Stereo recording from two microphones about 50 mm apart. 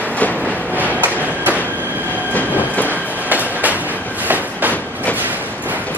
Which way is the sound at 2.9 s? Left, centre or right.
Right.